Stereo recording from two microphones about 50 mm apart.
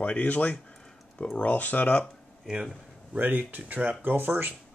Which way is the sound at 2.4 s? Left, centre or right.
Centre.